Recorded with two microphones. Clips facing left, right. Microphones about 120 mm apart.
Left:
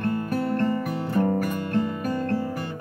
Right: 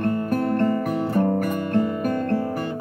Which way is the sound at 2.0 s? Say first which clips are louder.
Right 3 dB; 55° right (ahead or behind).